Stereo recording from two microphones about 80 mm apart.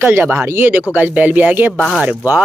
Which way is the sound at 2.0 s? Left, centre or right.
Right.